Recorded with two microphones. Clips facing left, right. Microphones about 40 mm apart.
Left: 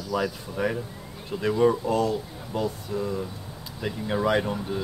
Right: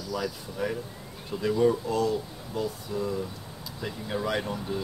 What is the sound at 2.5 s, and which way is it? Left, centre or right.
Speech, centre.